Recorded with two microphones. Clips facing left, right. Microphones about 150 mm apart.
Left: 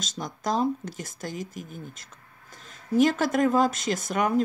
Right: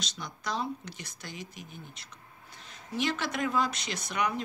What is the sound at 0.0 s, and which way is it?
Speech, 45° left (ahead or behind).